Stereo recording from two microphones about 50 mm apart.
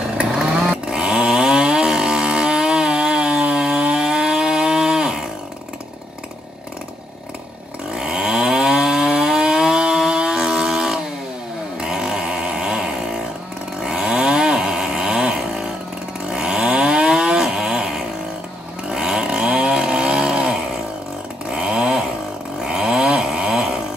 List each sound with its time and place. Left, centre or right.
0.2 s chainsaw: centre
7.9 s chainsaw: centre
21.5 s chainsaw: centre
22.6 s a sound: centre